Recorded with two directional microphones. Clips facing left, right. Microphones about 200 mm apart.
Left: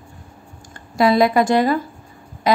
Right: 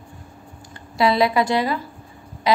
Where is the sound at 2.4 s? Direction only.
45° left (ahead or behind).